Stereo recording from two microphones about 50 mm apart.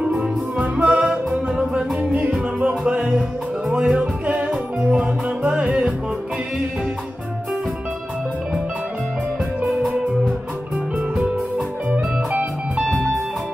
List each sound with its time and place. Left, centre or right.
0.2 s music: right
11.9 s music: right